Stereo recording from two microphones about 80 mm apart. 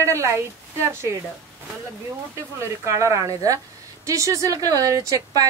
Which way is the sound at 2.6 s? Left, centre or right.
Right.